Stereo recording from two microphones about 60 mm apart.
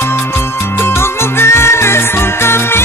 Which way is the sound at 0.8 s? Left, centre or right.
Left.